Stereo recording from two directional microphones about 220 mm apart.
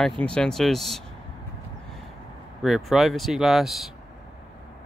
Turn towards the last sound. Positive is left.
turn(degrees=0)  # may be behind; listen again after turning